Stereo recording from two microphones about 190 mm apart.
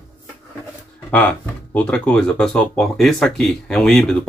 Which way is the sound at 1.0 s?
10° left (ahead or behind).